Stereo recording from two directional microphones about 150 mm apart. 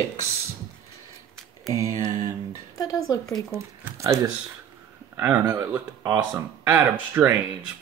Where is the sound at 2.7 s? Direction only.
25° left (ahead or behind).